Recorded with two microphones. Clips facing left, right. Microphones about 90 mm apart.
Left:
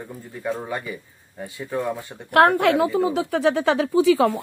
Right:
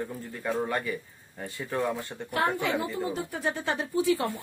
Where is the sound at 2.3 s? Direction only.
65° left (ahead or behind).